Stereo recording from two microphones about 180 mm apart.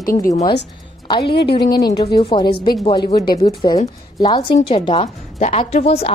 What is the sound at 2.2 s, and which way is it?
A woman's voice, 25° left (ahead or behind).